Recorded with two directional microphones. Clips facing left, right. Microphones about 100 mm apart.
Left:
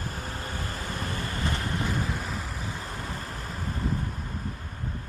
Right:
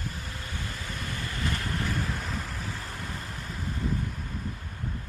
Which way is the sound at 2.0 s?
Centre (ahead or behind).